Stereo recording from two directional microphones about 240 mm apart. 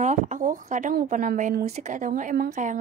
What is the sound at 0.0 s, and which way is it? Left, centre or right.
Speech, right.